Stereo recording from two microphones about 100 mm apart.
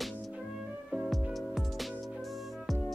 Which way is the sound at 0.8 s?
Centre (ahead or behind).